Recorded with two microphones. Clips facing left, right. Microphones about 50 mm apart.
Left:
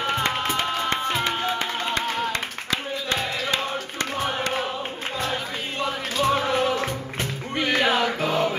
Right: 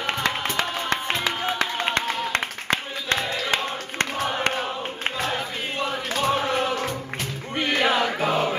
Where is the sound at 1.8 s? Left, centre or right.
Right.